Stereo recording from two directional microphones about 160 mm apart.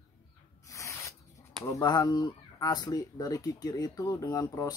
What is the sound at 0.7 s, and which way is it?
Spray, 20° left (ahead or behind).